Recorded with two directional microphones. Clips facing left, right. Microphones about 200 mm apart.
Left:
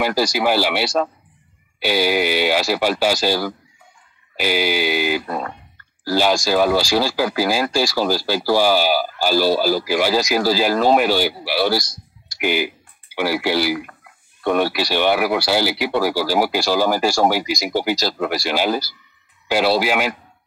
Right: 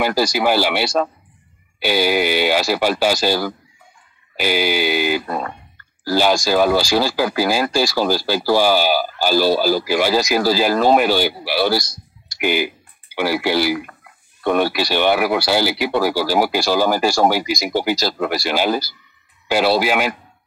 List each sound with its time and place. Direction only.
0.0 s speech: 55° right (ahead or behind)